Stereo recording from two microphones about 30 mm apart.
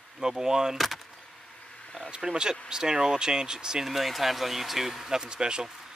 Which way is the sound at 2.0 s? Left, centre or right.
Right.